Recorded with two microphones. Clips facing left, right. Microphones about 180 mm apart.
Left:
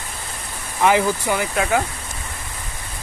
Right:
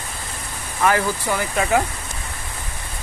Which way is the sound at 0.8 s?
15° left (ahead or behind).